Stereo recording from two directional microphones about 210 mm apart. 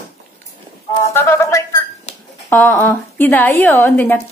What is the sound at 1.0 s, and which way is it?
A woman's voice, 15° left (ahead or behind).